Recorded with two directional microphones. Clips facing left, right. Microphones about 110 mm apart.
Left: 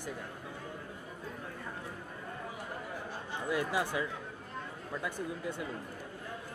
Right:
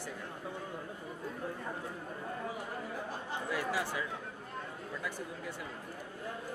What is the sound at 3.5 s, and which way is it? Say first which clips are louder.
Speech: left 3 dB; 20° left (ahead or behind).